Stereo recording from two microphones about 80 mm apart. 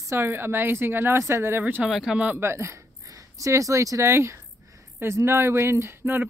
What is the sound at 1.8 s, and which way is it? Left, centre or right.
Speech, centre.